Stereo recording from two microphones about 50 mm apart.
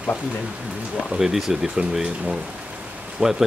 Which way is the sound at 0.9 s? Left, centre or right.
Centre.